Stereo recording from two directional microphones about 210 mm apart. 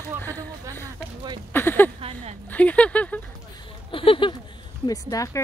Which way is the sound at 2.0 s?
25° right (ahead or behind).